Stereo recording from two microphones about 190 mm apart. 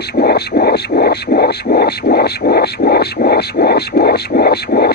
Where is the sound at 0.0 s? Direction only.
55° left (ahead or behind).